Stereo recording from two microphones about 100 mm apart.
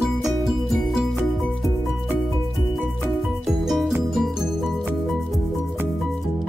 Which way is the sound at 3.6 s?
Centre (ahead or behind).